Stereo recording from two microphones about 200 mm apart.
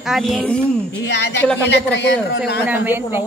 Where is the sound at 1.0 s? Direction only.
60° left (ahead or behind).